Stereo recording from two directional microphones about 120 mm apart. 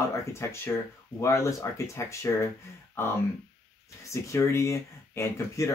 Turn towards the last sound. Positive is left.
turn(degrees=25)  # may be behind; listen again after turning